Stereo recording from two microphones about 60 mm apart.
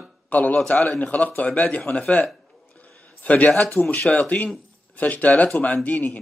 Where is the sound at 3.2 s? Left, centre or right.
Left.